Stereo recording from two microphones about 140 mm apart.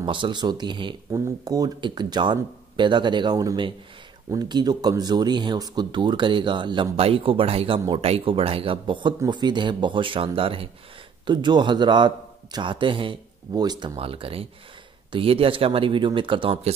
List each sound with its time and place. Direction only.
0.0 s speech: 35° right (ahead or behind)